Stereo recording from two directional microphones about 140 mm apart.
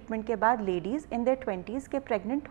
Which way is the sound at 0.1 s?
20° right (ahead or behind).